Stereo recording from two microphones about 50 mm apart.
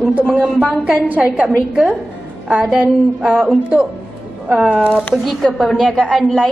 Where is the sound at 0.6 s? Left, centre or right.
Right.